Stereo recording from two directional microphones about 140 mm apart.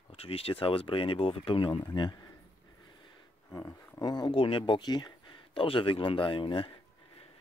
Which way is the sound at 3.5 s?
25° left (ahead or behind).